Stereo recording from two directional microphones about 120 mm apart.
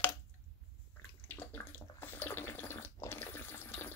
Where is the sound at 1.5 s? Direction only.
15° left (ahead or behind).